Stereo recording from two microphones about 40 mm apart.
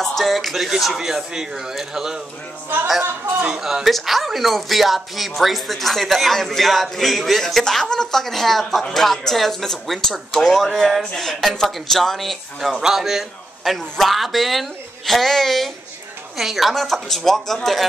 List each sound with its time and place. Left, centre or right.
0.0 s speech: centre
3.5 s speech: centre
11.2 s speech: centre
16.3 s speech: centre